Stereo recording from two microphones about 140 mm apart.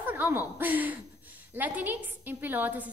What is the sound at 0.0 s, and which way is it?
A woman's voice, 15° right (ahead or behind).